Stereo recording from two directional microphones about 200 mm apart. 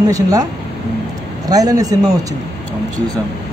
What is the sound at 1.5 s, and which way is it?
Speech, 20° right (ahead or behind).